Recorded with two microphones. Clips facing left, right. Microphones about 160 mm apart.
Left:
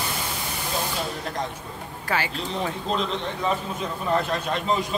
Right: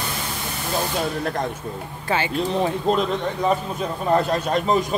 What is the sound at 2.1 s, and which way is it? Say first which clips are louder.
Speech: right 5 dB; 25° right (ahead or behind).